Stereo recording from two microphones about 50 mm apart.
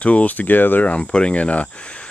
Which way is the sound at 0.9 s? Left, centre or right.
Left.